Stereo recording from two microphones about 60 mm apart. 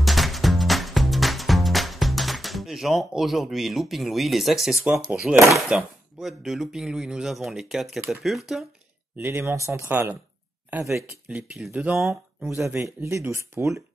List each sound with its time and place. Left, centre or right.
0.0 s music: centre
5.3 s speech: centre
5.7 s speech: centre
6.2 s speech: centre
9.1 s speech: right
11.5 s speech: centre
12.5 s speech: right